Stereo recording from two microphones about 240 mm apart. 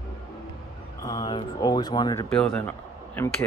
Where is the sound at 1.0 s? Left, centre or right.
Centre.